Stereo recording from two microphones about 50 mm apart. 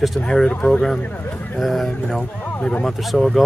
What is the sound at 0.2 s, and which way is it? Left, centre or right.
Speech, centre.